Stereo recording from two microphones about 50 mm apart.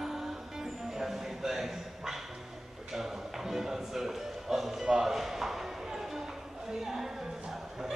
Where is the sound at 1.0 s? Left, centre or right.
Centre.